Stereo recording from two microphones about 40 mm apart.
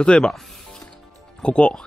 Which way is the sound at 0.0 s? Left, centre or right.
Left.